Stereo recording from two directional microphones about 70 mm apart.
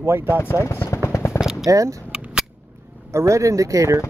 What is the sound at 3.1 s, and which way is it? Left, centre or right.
Speech, right.